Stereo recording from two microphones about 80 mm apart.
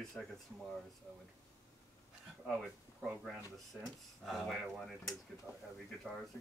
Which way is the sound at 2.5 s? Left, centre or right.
Centre.